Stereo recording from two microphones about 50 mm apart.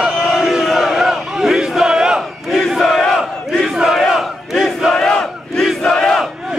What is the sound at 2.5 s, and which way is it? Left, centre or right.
Crowd, centre.